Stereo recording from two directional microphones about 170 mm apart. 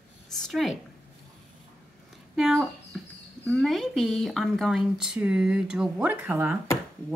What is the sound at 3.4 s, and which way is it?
Speech, centre (ahead or behind).